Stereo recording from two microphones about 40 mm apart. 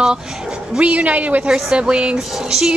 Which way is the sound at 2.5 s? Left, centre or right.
Centre.